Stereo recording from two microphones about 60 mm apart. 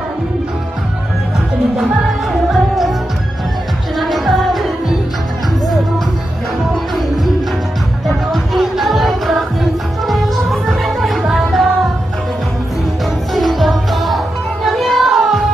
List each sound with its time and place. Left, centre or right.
2.5 s music: centre
4.0 s music: centre
6.7 s music: centre
13.3 s music: centre